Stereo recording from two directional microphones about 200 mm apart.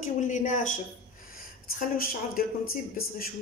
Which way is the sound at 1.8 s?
45° left (ahead or behind).